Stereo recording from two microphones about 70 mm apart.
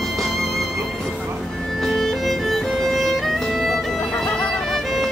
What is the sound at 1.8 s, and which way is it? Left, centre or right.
Music, centre.